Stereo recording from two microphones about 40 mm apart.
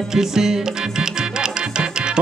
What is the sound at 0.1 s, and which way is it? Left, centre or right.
Music, centre.